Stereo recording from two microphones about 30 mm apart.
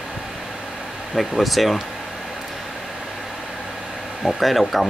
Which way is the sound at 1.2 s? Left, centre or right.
Centre.